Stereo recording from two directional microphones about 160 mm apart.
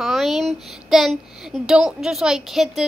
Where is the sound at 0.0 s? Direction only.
Centre (ahead or behind).